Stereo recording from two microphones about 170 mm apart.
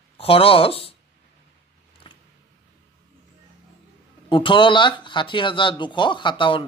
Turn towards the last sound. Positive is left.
turn(degrees=30)  # may be behind; listen again after turning